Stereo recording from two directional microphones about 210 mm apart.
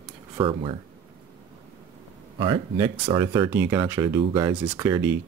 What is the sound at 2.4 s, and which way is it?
Speech, 25° right (ahead or behind).